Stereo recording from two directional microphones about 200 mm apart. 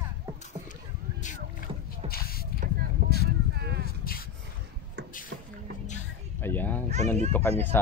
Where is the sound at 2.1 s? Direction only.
50° left (ahead or behind).